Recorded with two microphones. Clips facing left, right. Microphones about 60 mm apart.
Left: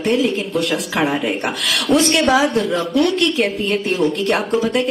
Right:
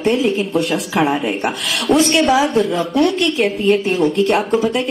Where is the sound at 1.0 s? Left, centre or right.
Centre.